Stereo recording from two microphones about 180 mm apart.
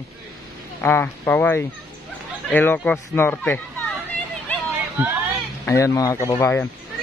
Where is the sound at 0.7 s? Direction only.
10° left (ahead or behind).